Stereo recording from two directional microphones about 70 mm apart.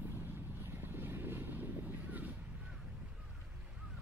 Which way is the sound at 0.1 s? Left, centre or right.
Right.